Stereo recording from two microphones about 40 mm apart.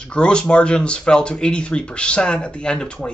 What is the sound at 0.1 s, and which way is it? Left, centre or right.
Speech, left.